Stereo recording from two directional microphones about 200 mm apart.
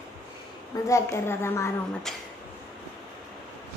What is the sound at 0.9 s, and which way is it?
Speech, 15° left (ahead or behind).